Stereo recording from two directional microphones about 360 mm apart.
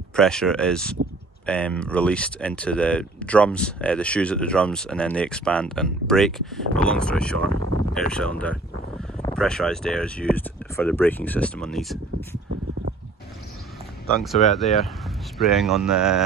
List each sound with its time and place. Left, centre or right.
0.1 s speech: centre
7.4 s speech: right
7.9 s speech: centre
14.2 s speech: centre